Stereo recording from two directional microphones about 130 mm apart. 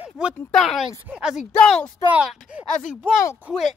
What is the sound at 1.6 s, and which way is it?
Speech, 5° left (ahead or behind).